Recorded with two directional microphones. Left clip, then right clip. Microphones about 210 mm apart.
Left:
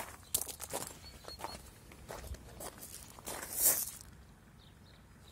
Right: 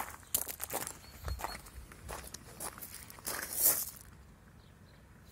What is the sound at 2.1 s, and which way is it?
Walk, 20° right (ahead or behind).